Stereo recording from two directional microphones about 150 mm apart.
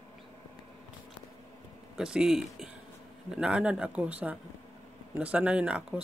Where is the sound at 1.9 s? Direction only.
5° right (ahead or behind).